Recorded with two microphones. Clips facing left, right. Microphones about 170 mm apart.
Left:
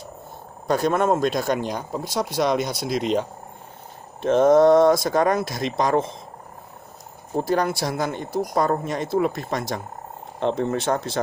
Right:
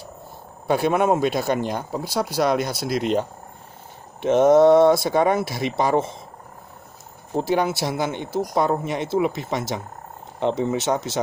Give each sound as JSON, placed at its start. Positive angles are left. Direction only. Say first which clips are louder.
{"t": 0.7, "sound": "speech", "louder": "right 1 dB", "side_deg": -5}
{"t": 4.3, "sound": "speech", "louder": "right 1 dB", "side_deg": -5}
{"t": 7.4, "sound": "speech", "louder": "right 1 dB", "side_deg": 0}